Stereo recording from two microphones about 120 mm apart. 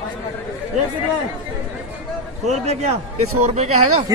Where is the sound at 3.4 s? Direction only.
65° right (ahead or behind).